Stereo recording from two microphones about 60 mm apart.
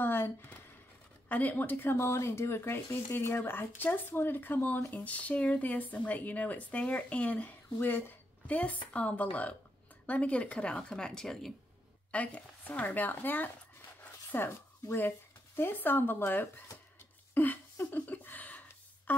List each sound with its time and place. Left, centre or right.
0.0 s a sound: left
1.3 s speech: left
2.0 s a woman's voice: left; by 11.5 s centre
12.1 s a woman's voice: left
17.3 s a sound: left
19.1 s music: left